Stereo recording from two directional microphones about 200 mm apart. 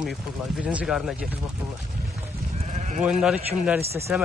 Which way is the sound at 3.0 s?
5° right (ahead or behind).